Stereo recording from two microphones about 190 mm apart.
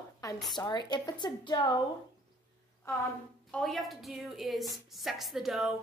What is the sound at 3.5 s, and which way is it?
A woman's voice, centre (ahead or behind).